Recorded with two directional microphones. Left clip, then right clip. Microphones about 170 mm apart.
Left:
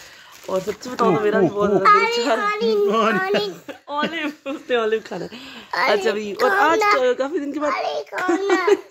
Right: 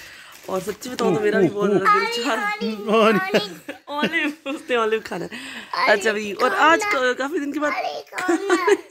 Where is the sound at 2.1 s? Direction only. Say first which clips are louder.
Left 4 dB; 5° right (ahead or behind).